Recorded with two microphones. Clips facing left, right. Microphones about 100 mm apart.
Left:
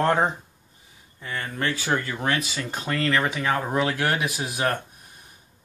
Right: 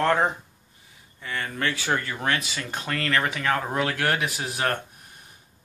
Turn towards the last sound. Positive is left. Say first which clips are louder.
# left 1 dB
turn(degrees=20)  # may be behind; listen again after turning